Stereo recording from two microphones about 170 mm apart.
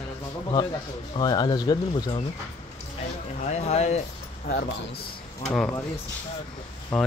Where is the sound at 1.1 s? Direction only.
25° left (ahead or behind).